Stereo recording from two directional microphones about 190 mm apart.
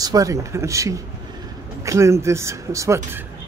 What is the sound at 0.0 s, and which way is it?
Speech, 20° right (ahead or behind).